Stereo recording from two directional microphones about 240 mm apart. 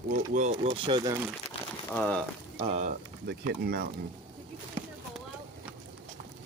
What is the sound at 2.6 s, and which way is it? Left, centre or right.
Speech, right.